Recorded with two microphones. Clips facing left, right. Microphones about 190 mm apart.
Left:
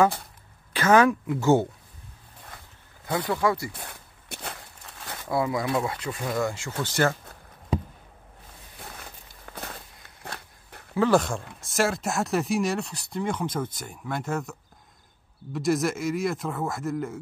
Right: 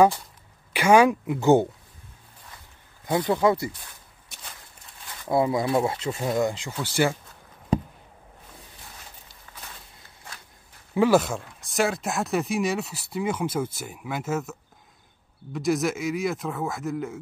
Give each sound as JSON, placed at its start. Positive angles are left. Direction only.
{"t": 0.7, "sound": "speech", "side_deg": -15}
{"t": 3.1, "sound": "speech", "side_deg": -20}
{"t": 3.7, "sound": "a sound", "side_deg": 65}
{"t": 5.3, "sound": "speech", "side_deg": -25}
{"t": 9.5, "sound": "a sound", "side_deg": 55}
{"t": 11.0, "sound": "speech", "side_deg": -5}